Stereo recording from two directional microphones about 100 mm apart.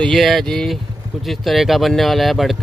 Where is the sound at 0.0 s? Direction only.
5° left (ahead or behind).